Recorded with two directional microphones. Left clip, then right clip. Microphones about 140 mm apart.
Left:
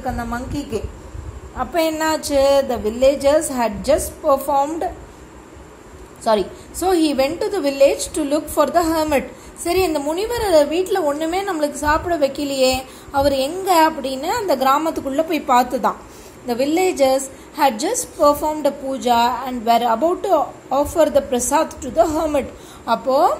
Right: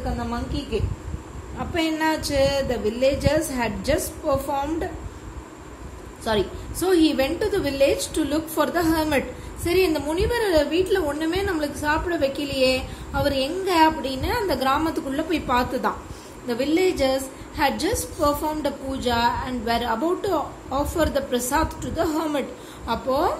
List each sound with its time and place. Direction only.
1.6 s a woman's voice: 25° left (ahead or behind)
6.2 s a woman's voice: 20° left (ahead or behind)